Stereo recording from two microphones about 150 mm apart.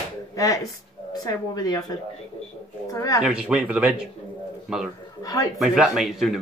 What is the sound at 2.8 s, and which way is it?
Speech, 25° left (ahead or behind).